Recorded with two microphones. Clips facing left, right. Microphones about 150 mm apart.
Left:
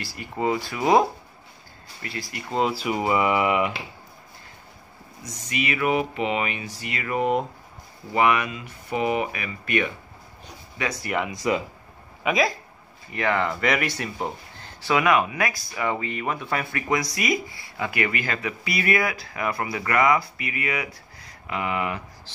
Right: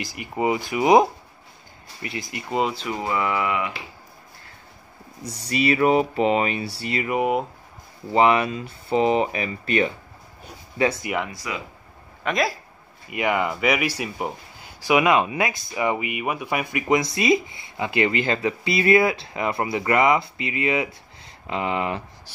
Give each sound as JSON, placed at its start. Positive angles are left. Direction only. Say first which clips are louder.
{"t": 0.0, "sound": "speech", "louder": "right 2 dB", "side_deg": -15}
{"t": 2.7, "sound": "speech", "louder": "left 3 dB", "side_deg": 10}
{"t": 5.2, "sound": "speech", "louder": "right 6 dB", "side_deg": -35}
{"t": 7.1, "sound": "speech", "louder": "even", "side_deg": -10}
{"t": 8.1, "sound": "speech", "louder": "right 3 dB", "side_deg": -30}
{"t": 11.2, "sound": "speech", "louder": "left 8 dB", "side_deg": 25}
{"t": 12.2, "sound": "speech", "louder": "left 1 dB", "side_deg": 5}
{"t": 13.1, "sound": "speech", "louder": "right 1 dB", "side_deg": -15}